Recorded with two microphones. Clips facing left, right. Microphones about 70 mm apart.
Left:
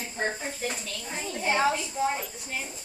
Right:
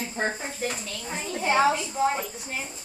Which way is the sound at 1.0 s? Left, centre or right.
Centre.